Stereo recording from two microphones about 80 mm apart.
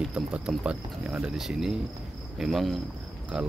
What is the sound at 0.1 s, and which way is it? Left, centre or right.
Speech, centre.